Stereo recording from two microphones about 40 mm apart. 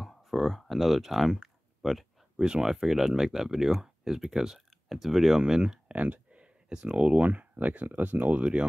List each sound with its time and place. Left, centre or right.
0.0 s speech: centre
2.3 s speech: right
2.6 s speech: centre
5.4 s speech: centre
5.9 s speech: right
7.2 s speech: right